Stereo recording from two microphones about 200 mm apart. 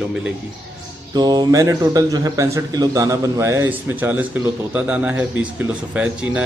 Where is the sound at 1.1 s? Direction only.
20° right (ahead or behind).